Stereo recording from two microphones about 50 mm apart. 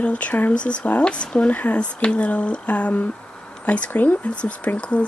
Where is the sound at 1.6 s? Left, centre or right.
Left.